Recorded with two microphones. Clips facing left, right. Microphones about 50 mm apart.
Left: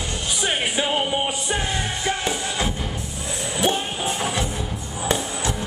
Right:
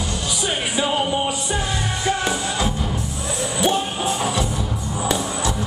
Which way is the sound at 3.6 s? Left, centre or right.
Left.